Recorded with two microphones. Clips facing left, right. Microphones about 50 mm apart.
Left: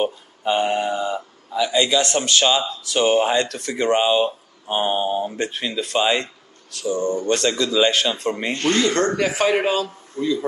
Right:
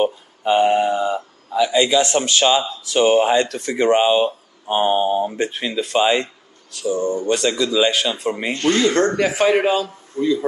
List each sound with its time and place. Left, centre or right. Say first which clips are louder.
0.0 s a man's voice: right 3 dB; centre